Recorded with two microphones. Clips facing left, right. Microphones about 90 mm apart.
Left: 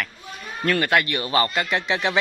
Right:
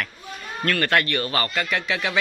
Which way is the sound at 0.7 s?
15° left (ahead or behind).